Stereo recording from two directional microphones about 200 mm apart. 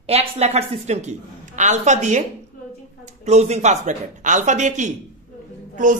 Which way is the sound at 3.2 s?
35° right (ahead or behind).